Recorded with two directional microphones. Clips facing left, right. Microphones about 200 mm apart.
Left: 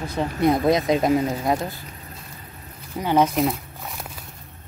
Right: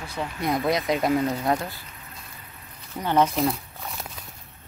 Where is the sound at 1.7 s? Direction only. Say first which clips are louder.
Left 5 dB; 35° left (ahead or behind).